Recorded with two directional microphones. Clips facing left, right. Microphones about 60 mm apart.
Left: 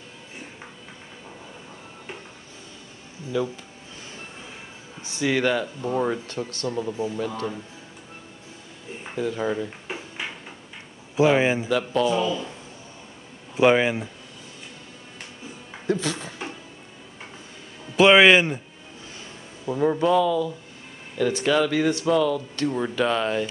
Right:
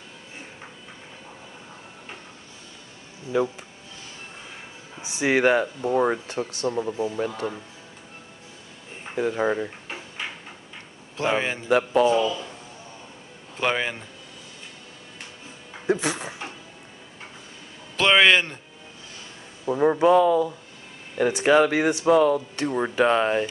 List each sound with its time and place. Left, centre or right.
5.0 s speech: right
9.1 s speech: right
11.1 s a man's voice: centre
11.7 s speech: right
13.6 s a man's voice: centre
15.9 s a sound: right
17.9 s a man's voice: centre
19.6 s speech: right
20.2 s speech: right